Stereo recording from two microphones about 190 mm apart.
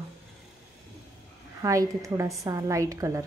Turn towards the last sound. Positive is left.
turn(degrees=-15)  # may be behind; listen again after turning